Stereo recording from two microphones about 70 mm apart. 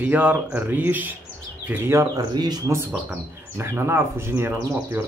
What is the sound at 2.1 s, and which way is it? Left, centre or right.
Speech, right.